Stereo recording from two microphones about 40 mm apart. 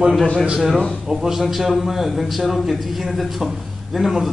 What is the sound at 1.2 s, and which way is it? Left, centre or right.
A man's voice, centre.